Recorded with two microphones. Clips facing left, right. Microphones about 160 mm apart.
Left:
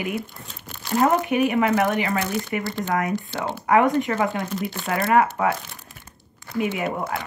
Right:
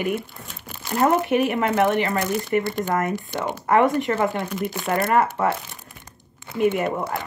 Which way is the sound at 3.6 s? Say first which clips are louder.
Even; centre (ahead or behind).